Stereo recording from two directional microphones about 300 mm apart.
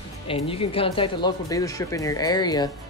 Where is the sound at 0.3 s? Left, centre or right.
Centre.